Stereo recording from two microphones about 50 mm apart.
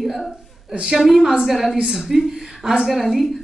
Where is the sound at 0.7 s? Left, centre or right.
Centre.